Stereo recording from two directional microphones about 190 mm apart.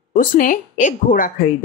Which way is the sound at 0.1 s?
45° left (ahead or behind).